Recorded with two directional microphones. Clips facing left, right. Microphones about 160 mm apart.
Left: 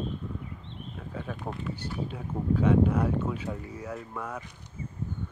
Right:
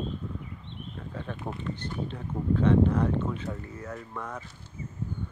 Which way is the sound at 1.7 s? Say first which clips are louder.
Even; 10° left (ahead or behind).